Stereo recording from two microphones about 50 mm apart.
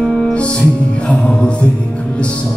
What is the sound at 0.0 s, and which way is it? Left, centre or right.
Music, centre.